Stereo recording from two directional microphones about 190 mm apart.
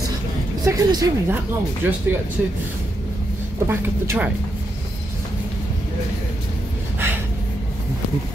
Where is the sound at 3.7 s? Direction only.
10° right (ahead or behind).